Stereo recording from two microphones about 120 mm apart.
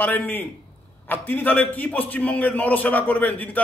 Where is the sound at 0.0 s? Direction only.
15° left (ahead or behind).